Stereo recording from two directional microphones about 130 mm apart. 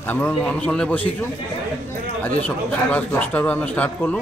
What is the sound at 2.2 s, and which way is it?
A man's voice, 15° left (ahead or behind).